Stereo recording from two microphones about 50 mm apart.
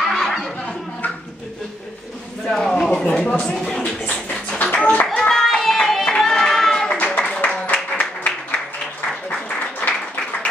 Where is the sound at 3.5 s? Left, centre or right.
Centre.